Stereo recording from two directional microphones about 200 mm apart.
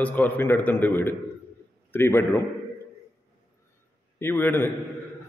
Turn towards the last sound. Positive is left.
turn(degrees=10)  # may be behind; listen again after turning